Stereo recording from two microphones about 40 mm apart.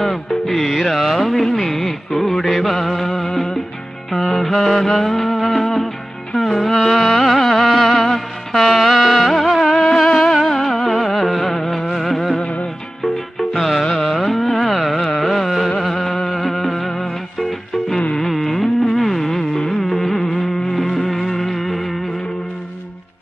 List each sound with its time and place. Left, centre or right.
0.0 s music: centre
12.4 s music: left
13.0 s music: centre
13.9 s carnatic music: centre
15.8 s music: centre
18.3 s carnatic music: centre
21.0 s a sound: centre